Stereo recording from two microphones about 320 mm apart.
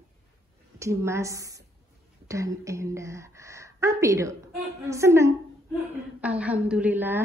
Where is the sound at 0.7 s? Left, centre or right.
Centre.